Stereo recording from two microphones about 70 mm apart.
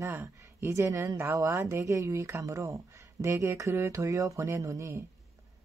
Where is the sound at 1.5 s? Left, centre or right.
Right.